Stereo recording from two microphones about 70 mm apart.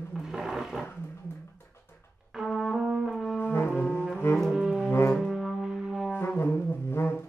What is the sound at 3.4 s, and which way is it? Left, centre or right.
Brass instrument, left.